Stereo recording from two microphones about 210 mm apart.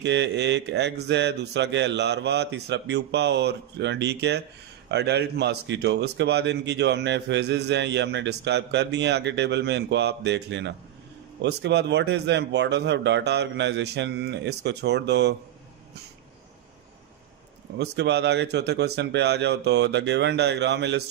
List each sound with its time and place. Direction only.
0.0 s speech: 55° right (ahead or behind)
17.7 s a man's voice: 55° right (ahead or behind)